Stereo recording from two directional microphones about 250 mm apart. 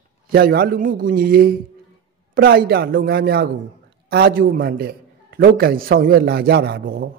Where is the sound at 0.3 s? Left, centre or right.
Right.